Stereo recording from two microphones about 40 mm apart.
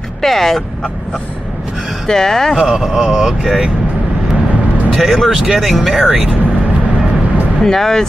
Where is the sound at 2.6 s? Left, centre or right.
Centre.